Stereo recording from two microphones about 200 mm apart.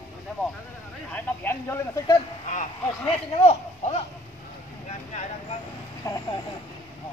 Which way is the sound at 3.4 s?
30° left (ahead or behind).